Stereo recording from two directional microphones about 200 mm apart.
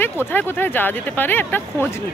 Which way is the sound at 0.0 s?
10° left (ahead or behind).